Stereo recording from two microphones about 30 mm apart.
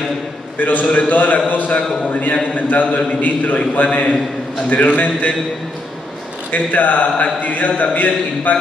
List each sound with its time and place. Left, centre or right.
0.6 s a man's voice: left
6.5 s a man's voice: left